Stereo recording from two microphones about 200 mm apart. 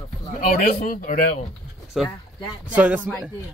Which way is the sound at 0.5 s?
45° left (ahead or behind).